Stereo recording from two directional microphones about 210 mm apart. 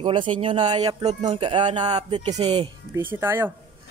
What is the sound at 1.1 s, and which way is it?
Speech, 35° right (ahead or behind).